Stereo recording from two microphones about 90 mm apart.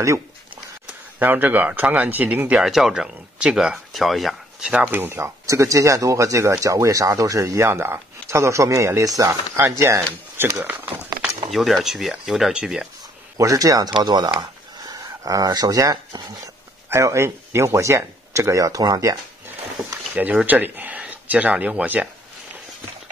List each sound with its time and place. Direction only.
1.2 s speech: 20° right (ahead or behind)
2.6 s speech: 5° right (ahead or behind)
4.8 s speech: 25° right (ahead or behind)
11.5 s speech: centre (ahead or behind)
13.4 s speech: 40° right (ahead or behind)
14.4 s a sound: 45° right (ahead or behind)
16.9 s speech: 30° right (ahead or behind)
19.8 s a sound: 10° right (ahead or behind)
20.2 s speech: 20° right (ahead or behind)